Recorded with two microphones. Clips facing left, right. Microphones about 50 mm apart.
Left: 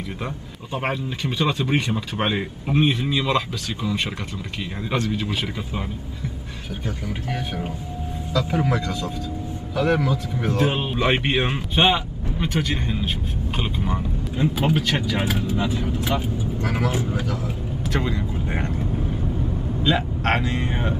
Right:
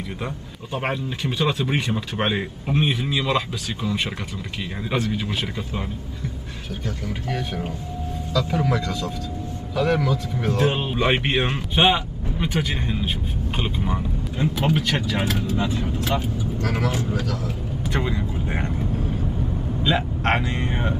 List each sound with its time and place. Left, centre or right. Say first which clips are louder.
0.7 s speech: even; centre
7.2 s speech: right 1 dB; centre
10.6 s speech: even; centre
16.0 s speech: even; centre
17.8 s speech: even; centre
18.9 s vehicle: even; centre
19.2 s vehicle: left 1 dB; centre